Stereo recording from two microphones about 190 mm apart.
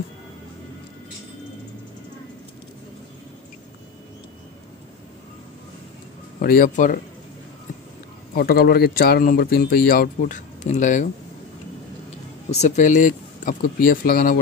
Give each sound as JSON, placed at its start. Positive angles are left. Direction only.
{"t": 6.4, "sound": "speech", "side_deg": 50}
{"t": 8.4, "sound": "speech", "side_deg": 50}
{"t": 12.4, "sound": "speech", "side_deg": 35}